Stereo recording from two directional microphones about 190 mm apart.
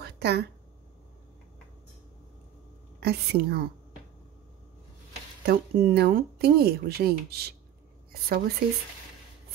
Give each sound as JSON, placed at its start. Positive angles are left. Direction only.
{"t": 0.0, "sound": "a sound", "side_deg": -60}
{"t": 3.0, "sound": "speech", "side_deg": -55}
{"t": 5.4, "sound": "speech", "side_deg": -50}